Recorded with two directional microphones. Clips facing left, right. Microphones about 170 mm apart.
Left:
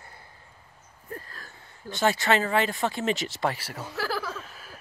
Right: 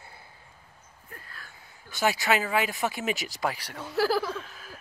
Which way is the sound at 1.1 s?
40° left (ahead or behind).